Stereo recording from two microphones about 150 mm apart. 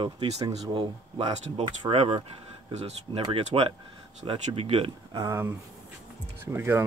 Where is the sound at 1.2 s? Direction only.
30° right (ahead or behind).